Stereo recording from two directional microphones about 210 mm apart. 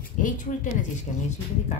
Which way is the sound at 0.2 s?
35° left (ahead or behind).